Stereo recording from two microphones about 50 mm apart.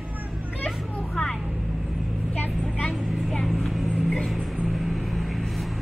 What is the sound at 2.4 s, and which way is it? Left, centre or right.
Vehicle, left.